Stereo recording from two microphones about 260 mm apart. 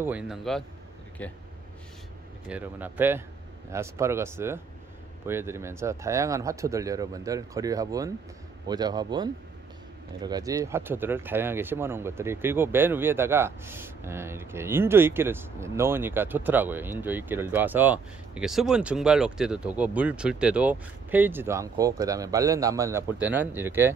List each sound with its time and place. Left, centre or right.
0.0 s a man's voice: centre
2.4 s speech: centre